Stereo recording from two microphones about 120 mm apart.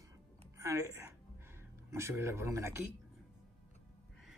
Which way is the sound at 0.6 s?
25° right (ahead or behind).